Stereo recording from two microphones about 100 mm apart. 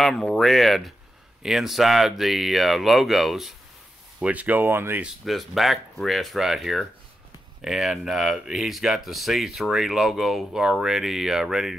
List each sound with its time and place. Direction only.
0.0 s speech: 5° left (ahead or behind)
4.2 s speech: 15° right (ahead or behind)
5.0 s speech: centre (ahead or behind)